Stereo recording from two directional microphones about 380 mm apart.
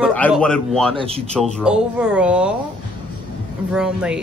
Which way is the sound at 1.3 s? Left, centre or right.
Centre.